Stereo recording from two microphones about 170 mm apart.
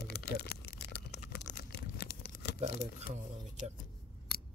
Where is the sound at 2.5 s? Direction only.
40° right (ahead or behind).